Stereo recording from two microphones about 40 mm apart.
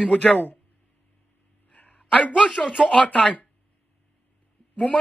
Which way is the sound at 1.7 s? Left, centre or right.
Left.